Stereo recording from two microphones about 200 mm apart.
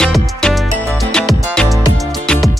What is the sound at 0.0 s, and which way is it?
Music, 5° left (ahead or behind).